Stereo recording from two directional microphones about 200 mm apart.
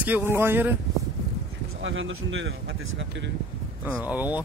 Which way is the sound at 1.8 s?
70° right (ahead or behind).